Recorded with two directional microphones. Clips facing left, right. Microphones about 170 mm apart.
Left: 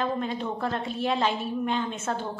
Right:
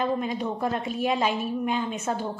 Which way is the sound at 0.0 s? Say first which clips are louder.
Right 2 dB; 10° right (ahead or behind).